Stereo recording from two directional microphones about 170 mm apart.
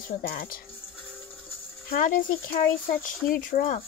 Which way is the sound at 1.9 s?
60° left (ahead or behind).